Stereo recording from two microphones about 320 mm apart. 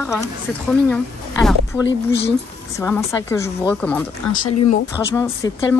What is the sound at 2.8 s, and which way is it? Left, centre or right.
A woman's voice, centre.